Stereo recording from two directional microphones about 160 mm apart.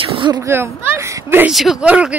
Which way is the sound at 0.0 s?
25° right (ahead or behind).